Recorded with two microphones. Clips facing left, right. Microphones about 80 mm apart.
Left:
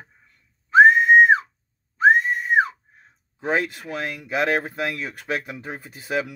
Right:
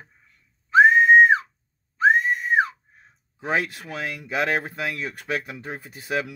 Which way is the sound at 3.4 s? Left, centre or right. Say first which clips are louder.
Left 2 dB; centre.